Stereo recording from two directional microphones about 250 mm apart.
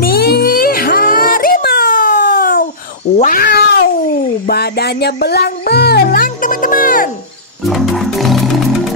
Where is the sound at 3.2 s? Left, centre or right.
Left.